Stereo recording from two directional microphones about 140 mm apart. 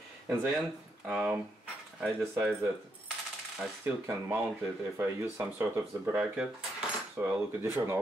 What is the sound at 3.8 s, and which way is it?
Speech, 15° right (ahead or behind).